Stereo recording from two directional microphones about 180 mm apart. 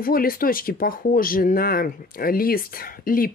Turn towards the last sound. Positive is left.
turn(degrees=50)  # may be behind; listen again after turning